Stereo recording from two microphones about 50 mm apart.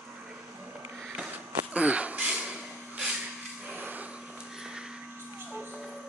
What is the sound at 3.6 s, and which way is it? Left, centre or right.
Vacuum cleaner, right.